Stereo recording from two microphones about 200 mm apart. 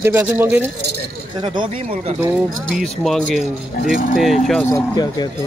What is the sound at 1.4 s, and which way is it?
Speech, 25° right (ahead or behind).